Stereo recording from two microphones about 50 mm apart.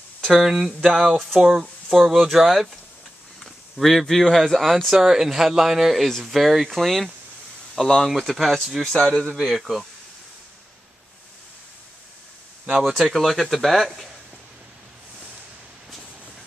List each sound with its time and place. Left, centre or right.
0.3 s speech: centre
3.7 s speech: centre
4.9 s speech: centre
8.8 s speech: centre
9.3 s speech: centre
12.6 s speech: centre
12.9 s speech: centre